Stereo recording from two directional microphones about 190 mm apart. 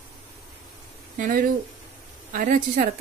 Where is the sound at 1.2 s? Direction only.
45° right (ahead or behind).